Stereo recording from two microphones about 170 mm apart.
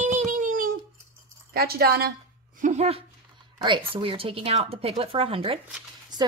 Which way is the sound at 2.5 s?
45° right (ahead or behind).